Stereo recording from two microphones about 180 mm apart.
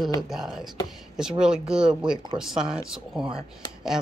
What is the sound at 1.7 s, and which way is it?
Speech, 5° right (ahead or behind).